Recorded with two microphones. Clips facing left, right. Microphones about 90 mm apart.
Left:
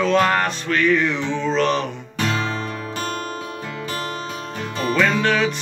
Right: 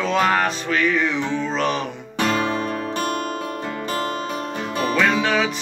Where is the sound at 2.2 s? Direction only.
45° right (ahead or behind).